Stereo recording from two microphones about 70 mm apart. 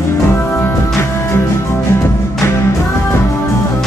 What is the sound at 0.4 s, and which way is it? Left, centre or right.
Music, left.